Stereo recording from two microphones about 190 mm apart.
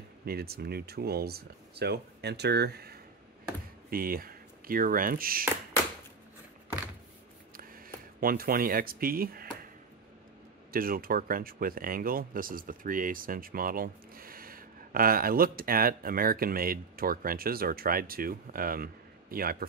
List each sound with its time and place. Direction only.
0.2 s speech: 55° right (ahead or behind)
7.5 s a sound: 50° right (ahead or behind)
10.7 s speech: 50° right (ahead or behind)